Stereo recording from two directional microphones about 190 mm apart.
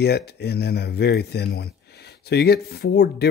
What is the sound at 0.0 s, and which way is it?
Speech, 60° left (ahead or behind).